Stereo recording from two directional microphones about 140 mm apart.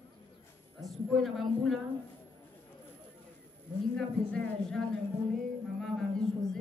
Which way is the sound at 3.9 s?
5° left (ahead or behind).